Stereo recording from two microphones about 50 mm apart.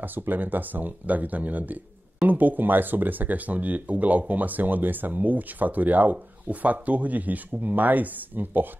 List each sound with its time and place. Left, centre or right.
0.0 s speech: right